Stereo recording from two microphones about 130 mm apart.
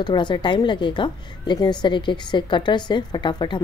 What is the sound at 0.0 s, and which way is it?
A woman's voice, 35° left (ahead or behind).